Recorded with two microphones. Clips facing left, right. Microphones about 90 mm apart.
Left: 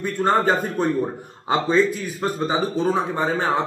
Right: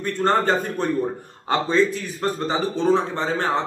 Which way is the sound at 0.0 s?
5° left (ahead or behind).